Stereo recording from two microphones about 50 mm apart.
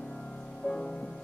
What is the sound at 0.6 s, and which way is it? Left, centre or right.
Music, centre.